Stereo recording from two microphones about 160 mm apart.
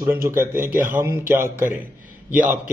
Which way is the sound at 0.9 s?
10° right (ahead or behind).